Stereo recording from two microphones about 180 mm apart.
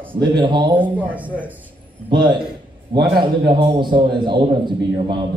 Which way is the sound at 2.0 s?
25° right (ahead or behind).